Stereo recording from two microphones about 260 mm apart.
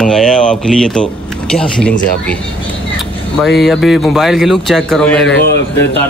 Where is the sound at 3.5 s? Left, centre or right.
Centre.